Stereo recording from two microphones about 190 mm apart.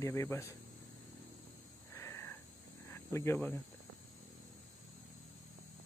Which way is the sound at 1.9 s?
15° left (ahead or behind).